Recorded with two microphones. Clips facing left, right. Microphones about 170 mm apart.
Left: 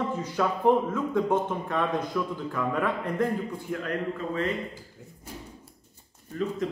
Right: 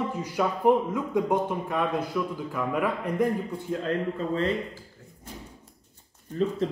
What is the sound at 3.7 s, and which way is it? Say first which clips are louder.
Speech: right 4 dB; 25° right (ahead or behind).